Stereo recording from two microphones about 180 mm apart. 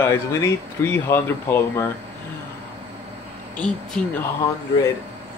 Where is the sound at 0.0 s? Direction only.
15° left (ahead or behind).